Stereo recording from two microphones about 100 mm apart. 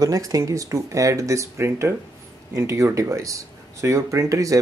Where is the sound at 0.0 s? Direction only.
35° right (ahead or behind).